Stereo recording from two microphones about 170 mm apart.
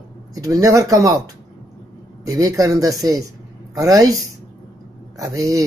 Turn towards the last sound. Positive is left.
turn(degrees=-20)  # may be behind; listen again after turning